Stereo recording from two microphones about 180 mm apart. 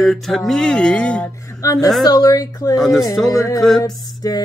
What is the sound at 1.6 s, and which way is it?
Mantra, 20° left (ahead or behind).